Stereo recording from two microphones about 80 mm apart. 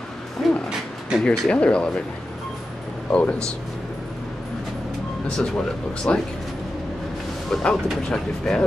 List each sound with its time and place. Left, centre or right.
0.4 s a sound: centre
1.2 s speech: centre
3.1 s speech: centre
5.4 s speech: centre
7.5 s speech: centre